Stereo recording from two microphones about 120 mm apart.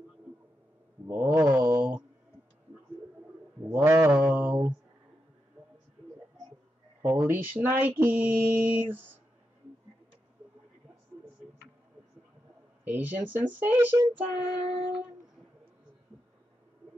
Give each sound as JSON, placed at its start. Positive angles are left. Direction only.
{"t": 1.1, "sound": "mantra", "side_deg": -10}
{"t": 3.6, "sound": "mantra", "side_deg": -15}
{"t": 7.0, "sound": "speech", "side_deg": -20}
{"t": 8.0, "sound": "mantra", "side_deg": -15}
{"t": 12.8, "sound": "mantra", "side_deg": -15}